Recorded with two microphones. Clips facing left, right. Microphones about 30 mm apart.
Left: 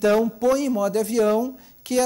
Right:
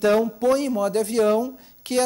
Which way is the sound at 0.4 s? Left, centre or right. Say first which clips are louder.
Even; right.